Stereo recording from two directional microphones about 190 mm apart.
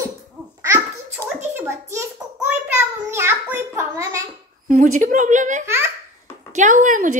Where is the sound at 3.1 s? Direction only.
10° right (ahead or behind).